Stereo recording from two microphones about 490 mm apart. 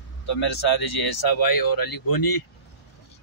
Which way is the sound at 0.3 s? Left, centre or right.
Left.